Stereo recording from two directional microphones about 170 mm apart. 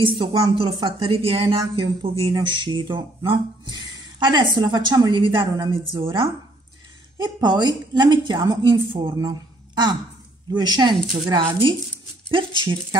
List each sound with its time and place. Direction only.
0.0 s a woman's voice: 30° right (ahead or behind)